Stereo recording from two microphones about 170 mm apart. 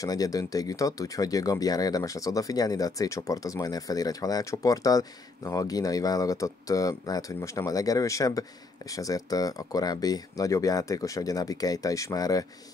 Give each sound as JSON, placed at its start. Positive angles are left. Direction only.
{"t": 0.0, "sound": "speech", "side_deg": 20}